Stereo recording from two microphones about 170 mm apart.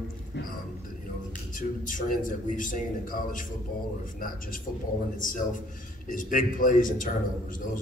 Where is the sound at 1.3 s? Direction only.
50° left (ahead or behind).